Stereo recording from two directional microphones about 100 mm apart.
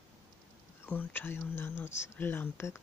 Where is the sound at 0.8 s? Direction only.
20° left (ahead or behind).